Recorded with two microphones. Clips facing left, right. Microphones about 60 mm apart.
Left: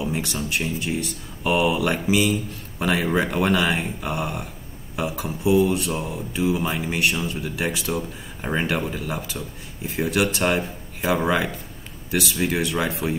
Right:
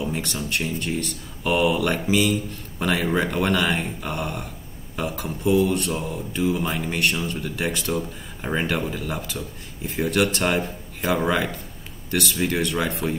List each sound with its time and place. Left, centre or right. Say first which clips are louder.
0.0 s speech: left 1 dB; centre